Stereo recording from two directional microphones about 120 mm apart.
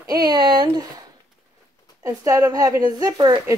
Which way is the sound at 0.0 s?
30° right (ahead or behind).